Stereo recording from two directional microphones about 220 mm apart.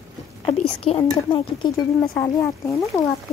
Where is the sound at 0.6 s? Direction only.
25° left (ahead or behind).